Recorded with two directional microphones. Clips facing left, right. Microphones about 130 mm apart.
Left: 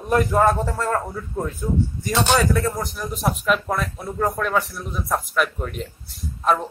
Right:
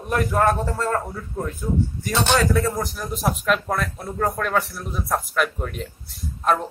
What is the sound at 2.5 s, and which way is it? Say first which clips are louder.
Speech: right 1 dB; centre (ahead or behind).